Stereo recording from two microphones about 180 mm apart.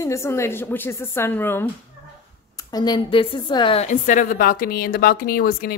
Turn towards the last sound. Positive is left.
turn(degrees=55)  # may be behind; listen again after turning